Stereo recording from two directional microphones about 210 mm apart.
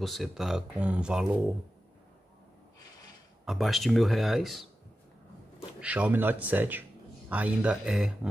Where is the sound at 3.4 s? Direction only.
Centre (ahead or behind).